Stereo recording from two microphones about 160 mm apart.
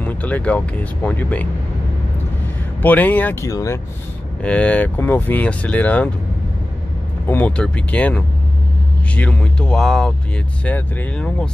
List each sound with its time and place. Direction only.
0.0 s speech: 10° left (ahead or behind)
2.8 s speech: 10° left (ahead or behind)
4.4 s speech: 10° left (ahead or behind)
7.2 s a man's voice: 10° left (ahead or behind)